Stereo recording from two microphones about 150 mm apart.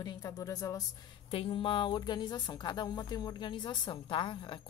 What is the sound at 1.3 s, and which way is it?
Speech, 35° left (ahead or behind).